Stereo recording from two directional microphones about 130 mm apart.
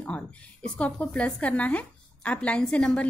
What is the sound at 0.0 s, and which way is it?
Speech, 10° left (ahead or behind).